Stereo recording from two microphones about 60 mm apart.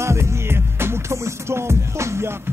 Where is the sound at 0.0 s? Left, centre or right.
Right.